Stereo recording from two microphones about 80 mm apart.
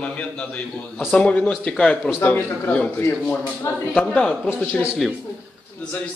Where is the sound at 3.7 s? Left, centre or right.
Left.